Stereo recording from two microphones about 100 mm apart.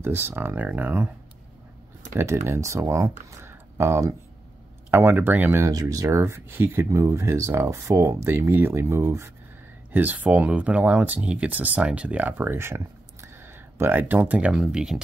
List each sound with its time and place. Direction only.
0.0 s speech: 25° right (ahead or behind)
2.1 s speech: 25° right (ahead or behind)
5.7 s speech: 40° right (ahead or behind)
9.9 s speech: 15° right (ahead or behind)